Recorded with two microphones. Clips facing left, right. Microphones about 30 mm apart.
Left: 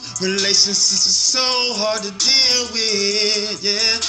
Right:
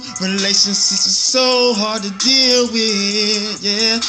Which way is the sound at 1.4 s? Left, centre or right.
Right.